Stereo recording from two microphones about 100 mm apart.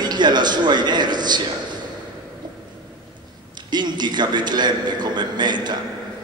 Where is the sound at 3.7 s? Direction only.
45° right (ahead or behind).